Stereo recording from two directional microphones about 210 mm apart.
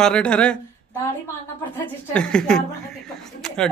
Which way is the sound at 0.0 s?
5° left (ahead or behind).